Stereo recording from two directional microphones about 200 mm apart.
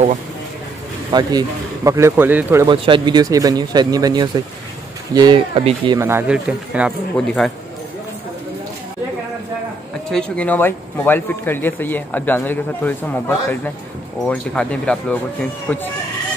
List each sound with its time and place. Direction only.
1.1 s a man's voice: 20° right (ahead or behind)
2.7 s speech: 25° right (ahead or behind)
5.9 s speech: 10° right (ahead or behind)
10.1 s speech: 5° left (ahead or behind)